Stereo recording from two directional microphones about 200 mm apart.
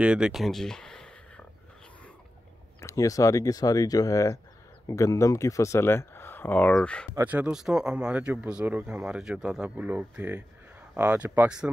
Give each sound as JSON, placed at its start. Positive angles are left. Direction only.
{"t": 0.0, "sound": "a sound", "side_deg": -5}
{"t": 2.8, "sound": "speech", "side_deg": 15}
{"t": 7.2, "sound": "speech", "side_deg": -10}